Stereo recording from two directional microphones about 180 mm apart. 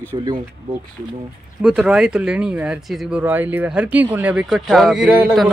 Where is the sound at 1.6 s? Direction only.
5° right (ahead or behind).